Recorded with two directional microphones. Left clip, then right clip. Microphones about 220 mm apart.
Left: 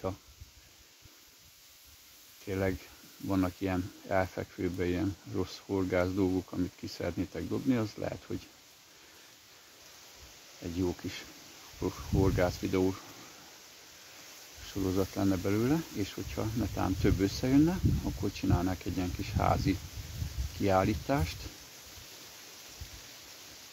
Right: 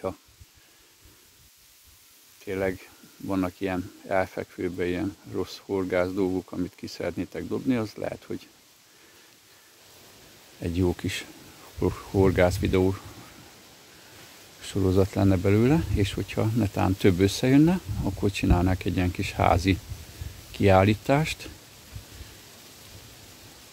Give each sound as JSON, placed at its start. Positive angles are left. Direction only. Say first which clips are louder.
{"t": 2.4, "sound": "speech", "louder": "right 5 dB", "side_deg": -45}
{"t": 10.6, "sound": "speech", "louder": "right 7 dB", "side_deg": -45}
{"t": 14.7, "sound": "speech", "louder": "right 8 dB", "side_deg": -40}